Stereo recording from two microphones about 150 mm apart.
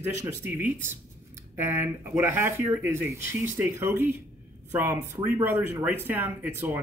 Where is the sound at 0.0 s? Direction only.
15° right (ahead or behind).